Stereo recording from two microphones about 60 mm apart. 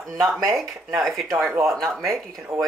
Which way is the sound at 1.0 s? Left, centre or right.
Centre.